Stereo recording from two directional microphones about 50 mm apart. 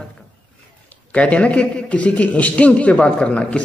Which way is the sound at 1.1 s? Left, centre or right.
Left.